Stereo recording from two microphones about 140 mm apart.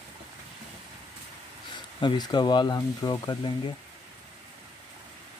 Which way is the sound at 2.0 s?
30° left (ahead or behind).